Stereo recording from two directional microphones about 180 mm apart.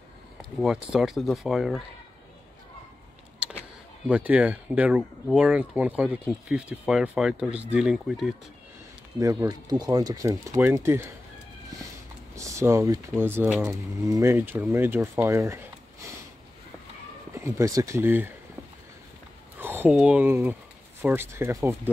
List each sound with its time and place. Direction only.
0.4 s speech: centre (ahead or behind)
4.1 s speech: 5° right (ahead or behind)
9.2 s speech: 20° right (ahead or behind)
12.4 s speech: 15° right (ahead or behind)
17.3 s speech: 15° right (ahead or behind)
19.6 s a sound: 10° right (ahead or behind)
19.9 s speech: 5° right (ahead or behind)